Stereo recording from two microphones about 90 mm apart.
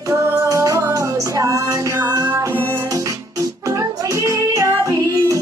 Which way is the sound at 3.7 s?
35° right (ahead or behind).